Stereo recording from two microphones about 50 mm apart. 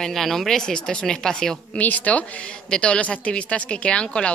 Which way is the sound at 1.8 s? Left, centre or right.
Left.